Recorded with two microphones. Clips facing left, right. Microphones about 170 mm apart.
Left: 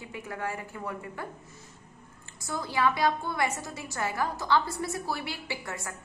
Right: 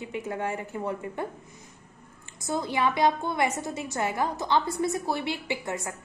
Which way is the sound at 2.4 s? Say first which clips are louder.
Right 2 dB; 20° right (ahead or behind).